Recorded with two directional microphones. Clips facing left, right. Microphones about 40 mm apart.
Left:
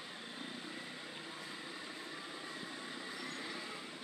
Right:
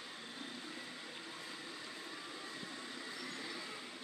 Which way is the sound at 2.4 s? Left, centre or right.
Centre.